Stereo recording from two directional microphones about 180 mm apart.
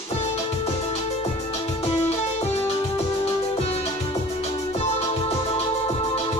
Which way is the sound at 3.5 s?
35° left (ahead or behind).